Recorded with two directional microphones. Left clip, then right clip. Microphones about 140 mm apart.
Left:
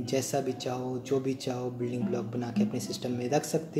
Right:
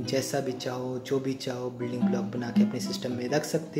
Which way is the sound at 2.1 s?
25° left (ahead or behind).